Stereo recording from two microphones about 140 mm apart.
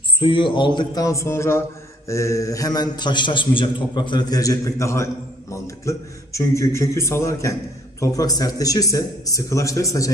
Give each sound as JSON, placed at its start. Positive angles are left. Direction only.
{"t": 0.2, "sound": "a man's voice", "side_deg": 35}